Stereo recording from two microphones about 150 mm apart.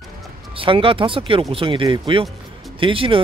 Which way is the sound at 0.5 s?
35° right (ahead or behind).